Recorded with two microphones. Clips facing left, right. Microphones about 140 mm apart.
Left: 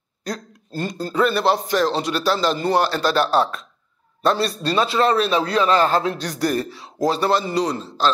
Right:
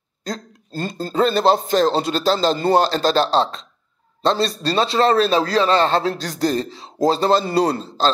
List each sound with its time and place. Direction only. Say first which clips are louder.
0.2 s a man's voice: right 1 dB; 25° right (ahead or behind)